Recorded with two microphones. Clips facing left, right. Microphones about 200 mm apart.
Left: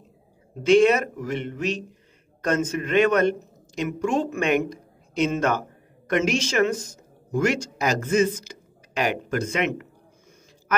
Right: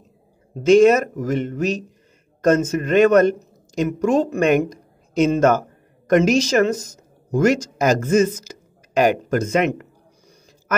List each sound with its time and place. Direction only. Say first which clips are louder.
0.7 s speech: right 5 dB; 45° right (ahead or behind)